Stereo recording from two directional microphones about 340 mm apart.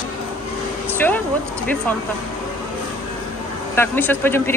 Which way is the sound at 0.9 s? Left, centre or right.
Centre.